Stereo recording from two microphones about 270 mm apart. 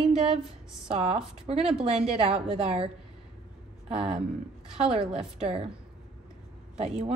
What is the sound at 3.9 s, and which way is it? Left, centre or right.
Speech, right.